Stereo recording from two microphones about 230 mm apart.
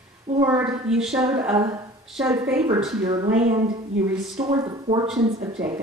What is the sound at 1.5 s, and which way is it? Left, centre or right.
Speech, centre.